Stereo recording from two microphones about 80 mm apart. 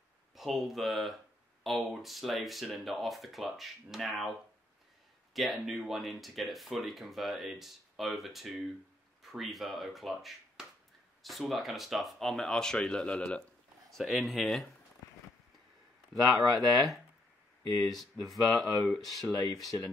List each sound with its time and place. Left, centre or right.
0.4 s speech: centre
5.3 s speech: centre
13.8 s speech: centre
16.2 s speech: centre
19.3 s speech: left